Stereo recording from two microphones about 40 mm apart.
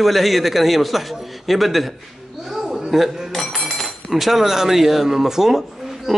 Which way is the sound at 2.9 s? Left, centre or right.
Centre.